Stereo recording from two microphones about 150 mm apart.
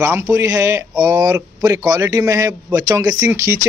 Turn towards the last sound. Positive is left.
turn(degrees=-20)  # may be behind; listen again after turning